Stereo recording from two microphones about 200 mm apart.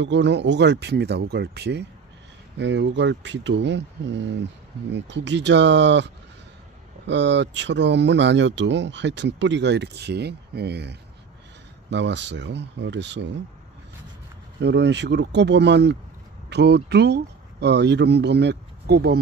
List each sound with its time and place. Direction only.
0.0 s speech: 60° right (ahead or behind)
14.6 s speech: 60° right (ahead or behind)